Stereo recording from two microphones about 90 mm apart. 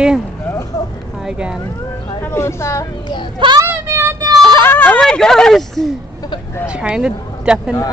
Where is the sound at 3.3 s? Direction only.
60° right (ahead or behind).